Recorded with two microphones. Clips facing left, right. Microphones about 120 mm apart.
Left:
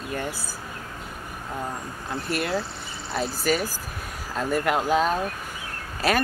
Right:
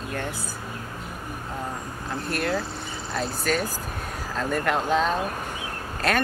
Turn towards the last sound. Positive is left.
turn(degrees=5)  # may be behind; listen again after turning